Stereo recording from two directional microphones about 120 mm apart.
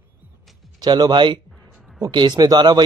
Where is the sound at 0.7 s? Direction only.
35° right (ahead or behind).